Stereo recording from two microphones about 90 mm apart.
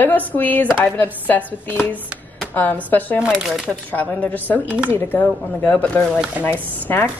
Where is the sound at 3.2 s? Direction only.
5° right (ahead or behind).